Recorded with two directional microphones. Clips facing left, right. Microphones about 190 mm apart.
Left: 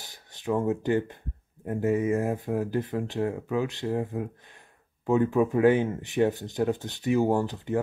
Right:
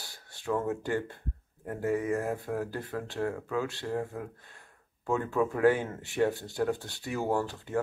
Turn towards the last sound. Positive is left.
turn(degrees=20)  # may be behind; listen again after turning